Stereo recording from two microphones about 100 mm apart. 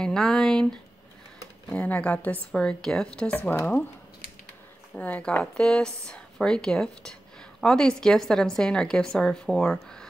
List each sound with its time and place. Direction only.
0.0 s a woman's voice: 5° left (ahead or behind)
4.9 s a woman's voice: 15° left (ahead or behind)